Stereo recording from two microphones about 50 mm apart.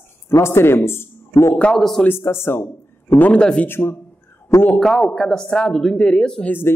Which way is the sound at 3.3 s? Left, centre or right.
Left.